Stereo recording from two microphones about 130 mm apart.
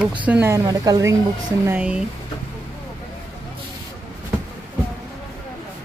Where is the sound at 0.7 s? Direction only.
30° right (ahead or behind).